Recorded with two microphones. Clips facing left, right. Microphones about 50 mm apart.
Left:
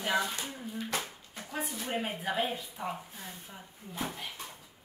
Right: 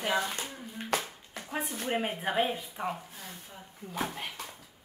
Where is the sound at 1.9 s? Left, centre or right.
Right.